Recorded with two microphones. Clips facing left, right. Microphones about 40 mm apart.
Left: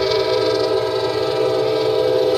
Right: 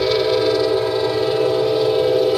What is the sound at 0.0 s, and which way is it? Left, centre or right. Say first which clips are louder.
Train: even; centre.